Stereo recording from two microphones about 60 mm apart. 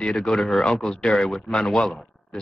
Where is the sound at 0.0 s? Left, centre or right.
Centre.